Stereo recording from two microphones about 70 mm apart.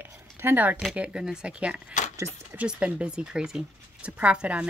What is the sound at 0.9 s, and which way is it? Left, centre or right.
Speech, centre.